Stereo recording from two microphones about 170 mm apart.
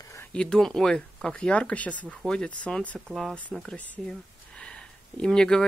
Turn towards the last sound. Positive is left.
turn(degrees=5)  # may be behind; listen again after turning